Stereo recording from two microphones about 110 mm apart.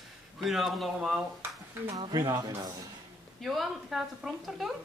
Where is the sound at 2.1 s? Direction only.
35° right (ahead or behind).